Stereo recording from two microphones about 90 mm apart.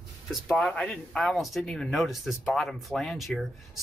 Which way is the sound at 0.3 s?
5° right (ahead or behind).